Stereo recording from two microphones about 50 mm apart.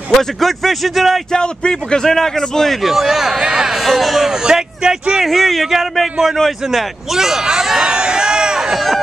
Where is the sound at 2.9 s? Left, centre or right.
Centre.